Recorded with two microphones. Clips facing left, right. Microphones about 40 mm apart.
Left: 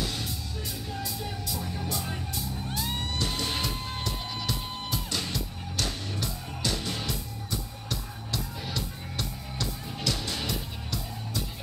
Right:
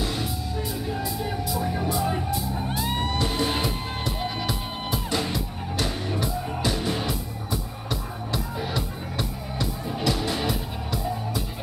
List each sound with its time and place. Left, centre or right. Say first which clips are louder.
0.0 s music: right 5 dB; centre
2.8 s music: right 5 dB; centre